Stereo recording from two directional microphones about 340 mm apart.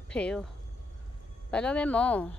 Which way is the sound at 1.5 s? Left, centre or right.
Centre.